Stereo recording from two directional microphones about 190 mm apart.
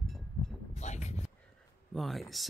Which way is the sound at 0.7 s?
35° left (ahead or behind).